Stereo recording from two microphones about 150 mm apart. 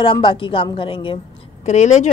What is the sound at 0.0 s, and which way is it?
Speech, 35° left (ahead or behind).